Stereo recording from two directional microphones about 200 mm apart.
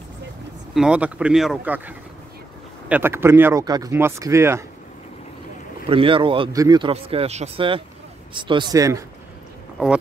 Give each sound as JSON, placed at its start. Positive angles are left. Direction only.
{"t": 0.7, "sound": "speech", "side_deg": -5}
{"t": 5.9, "sound": "speech", "side_deg": -25}
{"t": 6.9, "sound": "speech", "side_deg": -30}